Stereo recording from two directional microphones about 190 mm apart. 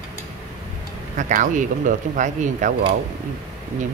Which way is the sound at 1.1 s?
40° right (ahead or behind).